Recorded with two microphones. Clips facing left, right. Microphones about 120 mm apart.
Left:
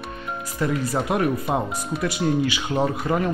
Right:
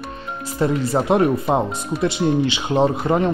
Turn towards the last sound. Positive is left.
turn(degrees=-25)  # may be behind; listen again after turning